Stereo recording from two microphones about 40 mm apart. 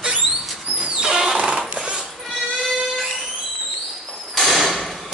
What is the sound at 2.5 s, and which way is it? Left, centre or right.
Train, centre.